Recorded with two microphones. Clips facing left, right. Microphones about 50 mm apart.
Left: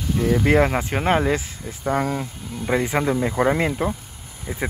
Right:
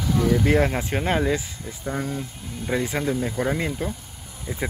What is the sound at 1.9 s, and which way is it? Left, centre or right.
Speech, left.